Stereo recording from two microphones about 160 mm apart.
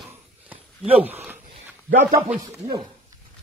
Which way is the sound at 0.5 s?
10° right (ahead or behind).